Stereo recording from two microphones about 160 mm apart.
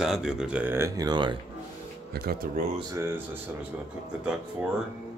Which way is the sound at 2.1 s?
70° right (ahead or behind).